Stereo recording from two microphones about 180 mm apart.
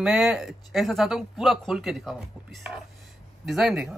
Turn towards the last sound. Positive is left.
turn(degrees=-5)  # may be behind; listen again after turning